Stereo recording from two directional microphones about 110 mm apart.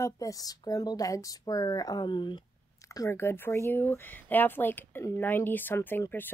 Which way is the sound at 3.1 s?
20° left (ahead or behind).